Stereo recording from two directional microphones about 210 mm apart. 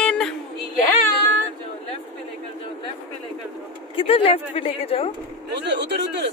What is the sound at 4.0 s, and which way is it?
Speech, 25° left (ahead or behind).